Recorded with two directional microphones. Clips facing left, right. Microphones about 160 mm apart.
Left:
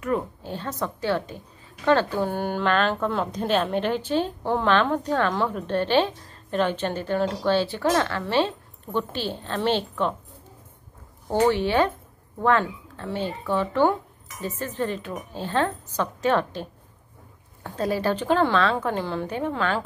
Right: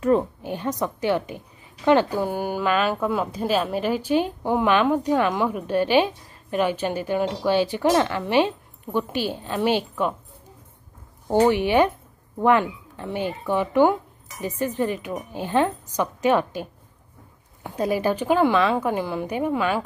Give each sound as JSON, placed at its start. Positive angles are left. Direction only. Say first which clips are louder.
{"t": 0.4, "sound": "a woman's voice", "louder": "right 4 dB", "side_deg": -15}
{"t": 11.2, "sound": "a woman's voice", "louder": "right 2 dB", "side_deg": -15}
{"t": 17.6, "sound": "a woman's voice", "louder": "right 2 dB", "side_deg": -10}